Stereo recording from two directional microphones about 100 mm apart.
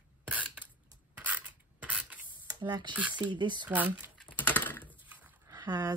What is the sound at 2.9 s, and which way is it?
Speech, 15° right (ahead or behind).